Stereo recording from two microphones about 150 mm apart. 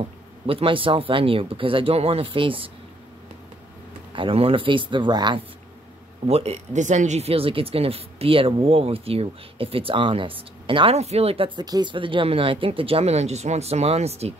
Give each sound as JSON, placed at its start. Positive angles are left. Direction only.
{"t": 0.0, "sound": "speech", "side_deg": -40}
{"t": 4.1, "sound": "speech", "side_deg": -35}
{"t": 6.2, "sound": "speech", "side_deg": -45}